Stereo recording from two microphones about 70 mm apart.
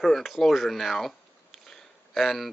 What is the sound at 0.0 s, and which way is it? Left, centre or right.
Speech, centre.